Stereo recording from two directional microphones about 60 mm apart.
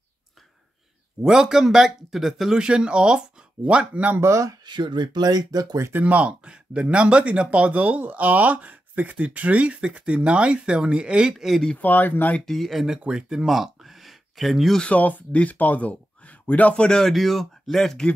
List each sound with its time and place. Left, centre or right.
1.2 s speech: centre
4.2 s speech: right
5.3 s speech: right
5.9 s speech: right; by 11.6 s centre
11.7 s speech: left
12.4 s speech: centre
14.8 s speech: left; by 18.0 s centre